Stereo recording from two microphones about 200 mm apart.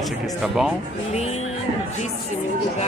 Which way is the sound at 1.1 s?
35° left (ahead or behind).